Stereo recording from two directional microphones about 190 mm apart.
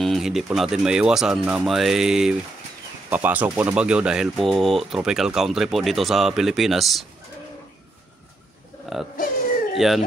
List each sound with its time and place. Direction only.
0.0 s speech: centre (ahead or behind)
9.1 s a sound: 45° left (ahead or behind)
9.8 s speech: centre (ahead or behind)